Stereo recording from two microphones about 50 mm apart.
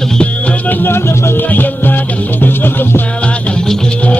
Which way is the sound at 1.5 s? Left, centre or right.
Left.